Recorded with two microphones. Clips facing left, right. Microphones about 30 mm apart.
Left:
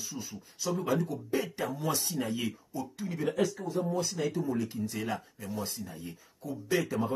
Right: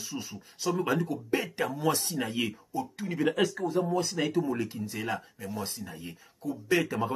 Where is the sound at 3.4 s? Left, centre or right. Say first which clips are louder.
Right 3 dB; right.